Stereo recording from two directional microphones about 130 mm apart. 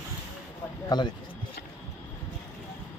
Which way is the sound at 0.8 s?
35° left (ahead or behind).